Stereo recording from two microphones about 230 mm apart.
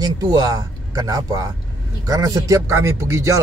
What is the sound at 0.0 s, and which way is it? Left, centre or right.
Speech, centre.